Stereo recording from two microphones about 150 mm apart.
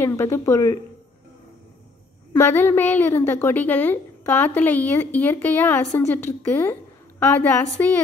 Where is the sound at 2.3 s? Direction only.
15° left (ahead or behind).